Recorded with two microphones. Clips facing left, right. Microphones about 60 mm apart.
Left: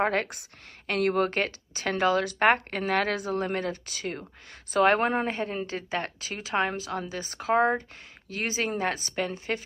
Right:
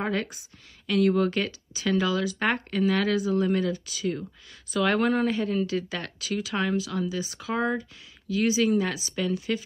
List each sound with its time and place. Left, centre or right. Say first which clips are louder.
0.0 s a woman's voice: left 3 dB; left